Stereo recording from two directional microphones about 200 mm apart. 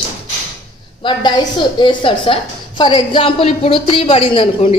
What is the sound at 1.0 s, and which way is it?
A woman's voice, 20° left (ahead or behind).